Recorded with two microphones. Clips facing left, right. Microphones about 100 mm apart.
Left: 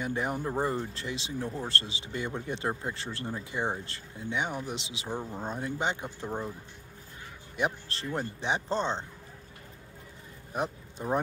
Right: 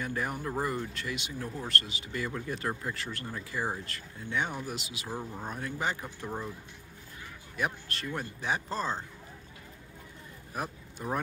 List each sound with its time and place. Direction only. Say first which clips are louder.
0.0 s speech: left 3 dB; 25° left (ahead or behind)
4.3 s speech: left 1 dB; 20° left (ahead or behind)
7.5 s speech: left 2 dB; 25° left (ahead or behind)
10.5 s speech: left 4 dB; 20° left (ahead or behind)